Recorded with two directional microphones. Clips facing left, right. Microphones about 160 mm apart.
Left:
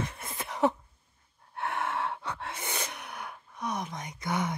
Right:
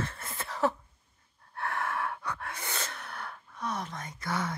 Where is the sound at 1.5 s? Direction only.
20° left (ahead or behind).